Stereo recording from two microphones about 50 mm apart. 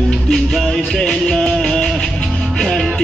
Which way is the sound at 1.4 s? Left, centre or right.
Centre.